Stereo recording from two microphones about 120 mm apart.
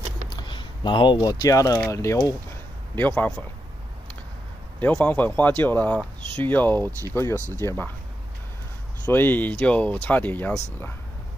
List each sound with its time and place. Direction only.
0.4 s a sound: 40° left (ahead or behind)
1.2 s speech: 30° left (ahead or behind)
3.0 s speech: 10° left (ahead or behind)
4.7 s speech: 10° left (ahead or behind)
9.0 s speech: 15° left (ahead or behind)